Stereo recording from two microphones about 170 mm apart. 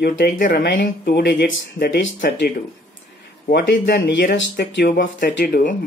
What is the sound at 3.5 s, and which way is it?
Speech, 85° left.